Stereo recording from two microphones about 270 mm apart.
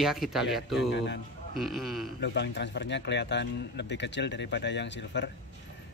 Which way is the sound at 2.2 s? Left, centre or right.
Left.